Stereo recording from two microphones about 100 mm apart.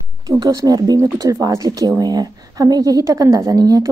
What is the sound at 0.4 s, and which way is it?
Speech, 40° right (ahead or behind).